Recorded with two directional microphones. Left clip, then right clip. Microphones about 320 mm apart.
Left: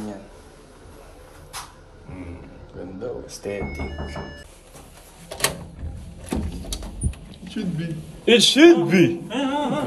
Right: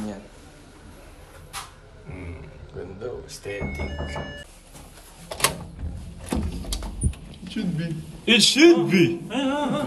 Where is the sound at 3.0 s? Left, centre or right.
Left.